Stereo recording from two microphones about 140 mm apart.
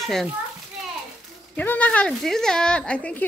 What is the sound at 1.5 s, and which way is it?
Speech, 10° left (ahead or behind).